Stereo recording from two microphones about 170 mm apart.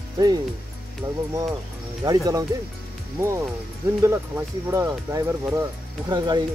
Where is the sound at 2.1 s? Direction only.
20° right (ahead or behind).